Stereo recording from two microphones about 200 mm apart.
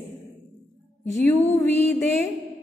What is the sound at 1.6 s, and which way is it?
Music, 35° right (ahead or behind).